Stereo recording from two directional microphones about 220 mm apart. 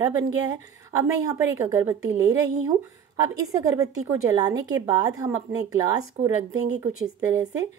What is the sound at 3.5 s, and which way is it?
A woman's voice, 15° right (ahead or behind).